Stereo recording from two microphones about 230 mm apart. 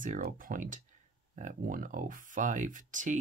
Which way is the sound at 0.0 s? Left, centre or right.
Right.